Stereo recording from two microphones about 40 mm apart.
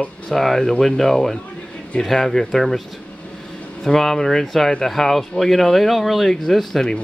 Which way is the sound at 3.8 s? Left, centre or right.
Centre.